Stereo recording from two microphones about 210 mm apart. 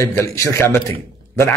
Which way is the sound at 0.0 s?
15° left (ahead or behind).